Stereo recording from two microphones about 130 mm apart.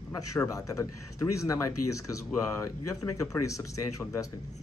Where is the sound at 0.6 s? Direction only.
25° left (ahead or behind).